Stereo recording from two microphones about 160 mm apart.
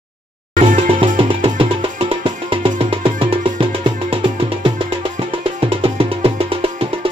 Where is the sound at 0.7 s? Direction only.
35° right (ahead or behind).